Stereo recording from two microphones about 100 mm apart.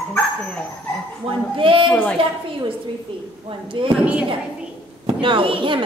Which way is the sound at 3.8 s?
65° right (ahead or behind).